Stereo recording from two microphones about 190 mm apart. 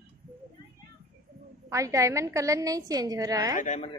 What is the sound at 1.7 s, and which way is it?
A woman's voice, 15° right (ahead or behind).